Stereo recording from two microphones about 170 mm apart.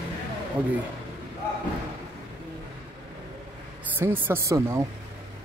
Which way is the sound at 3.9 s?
10° right (ahead or behind).